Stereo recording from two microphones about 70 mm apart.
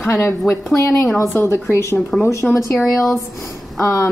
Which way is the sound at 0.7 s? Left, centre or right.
Left.